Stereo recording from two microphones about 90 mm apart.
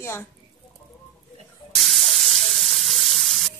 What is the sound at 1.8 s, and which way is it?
Frying, centre (ahead or behind).